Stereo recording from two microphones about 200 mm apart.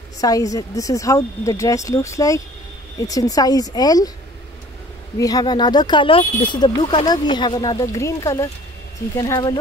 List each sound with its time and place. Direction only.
0.2 s speech: 15° left (ahead or behind)
5.2 s speech: 20° left (ahead or behind)